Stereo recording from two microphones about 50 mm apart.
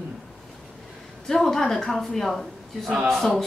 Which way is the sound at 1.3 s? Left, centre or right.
Centre.